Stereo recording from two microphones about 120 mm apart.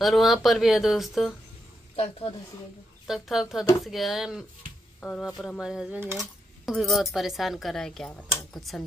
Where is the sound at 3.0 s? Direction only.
Centre (ahead or behind).